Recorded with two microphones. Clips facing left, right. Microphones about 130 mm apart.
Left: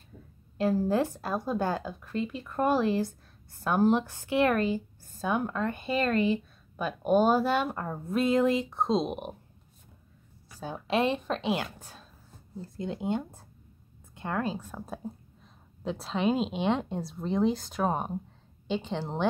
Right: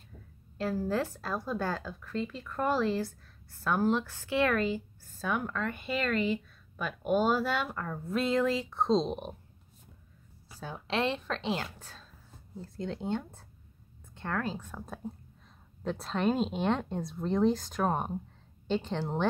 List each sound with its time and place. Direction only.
0.6 s a woman's voice: 20° left (ahead or behind)
10.6 s a woman's voice: 15° left (ahead or behind); by 19.2 s centre (ahead or behind)